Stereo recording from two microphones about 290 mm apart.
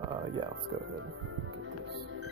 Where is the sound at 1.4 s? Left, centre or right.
Right.